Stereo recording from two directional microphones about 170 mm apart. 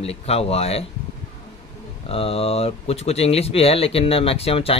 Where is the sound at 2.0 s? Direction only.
35° left (ahead or behind).